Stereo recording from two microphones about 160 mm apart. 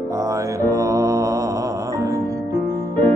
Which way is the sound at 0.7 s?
20° right (ahead or behind).